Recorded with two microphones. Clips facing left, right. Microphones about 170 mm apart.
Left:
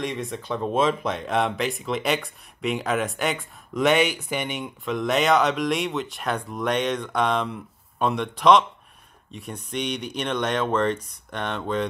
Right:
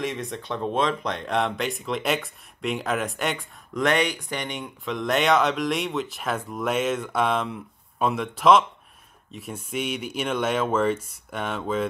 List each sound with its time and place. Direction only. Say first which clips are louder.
0.0 s speech: even; centre (ahead or behind)